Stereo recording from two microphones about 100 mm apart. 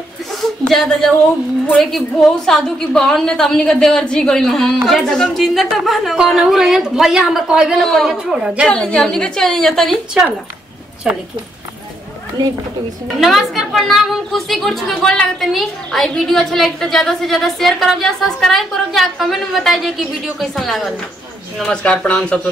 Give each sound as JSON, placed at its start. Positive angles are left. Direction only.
{"t": 0.7, "sound": "a woman's voice", "side_deg": 5}
{"t": 8.6, "sound": "a woman's voice", "side_deg": 10}
{"t": 13.2, "sound": "a woman's voice", "side_deg": 0}